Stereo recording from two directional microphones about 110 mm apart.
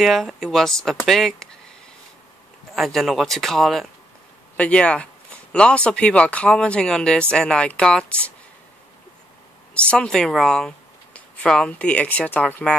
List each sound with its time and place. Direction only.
0.0 s speech: centre (ahead or behind)
2.7 s speech: centre (ahead or behind)
4.6 s speech: 10° left (ahead or behind)
9.8 s speech: 10° left (ahead or behind)